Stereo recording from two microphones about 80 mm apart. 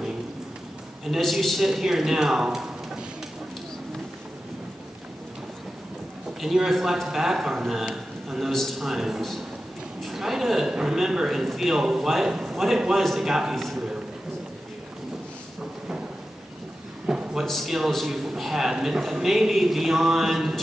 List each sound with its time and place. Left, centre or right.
1.0 s a man's voice: centre
6.4 s a man's voice: centre
17.0 s a sound: centre
17.5 s a man's voice: centre